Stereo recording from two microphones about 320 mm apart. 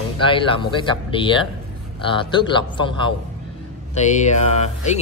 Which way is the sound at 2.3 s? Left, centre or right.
Centre.